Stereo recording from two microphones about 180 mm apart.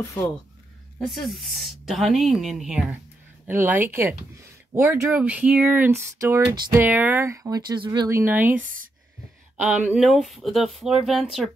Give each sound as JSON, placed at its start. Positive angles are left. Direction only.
{"t": 1.0, "sound": "a woman's voice", "side_deg": 0}